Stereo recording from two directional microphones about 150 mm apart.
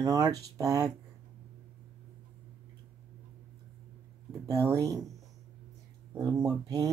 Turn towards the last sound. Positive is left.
turn(degrees=-25)  # may be behind; listen again after turning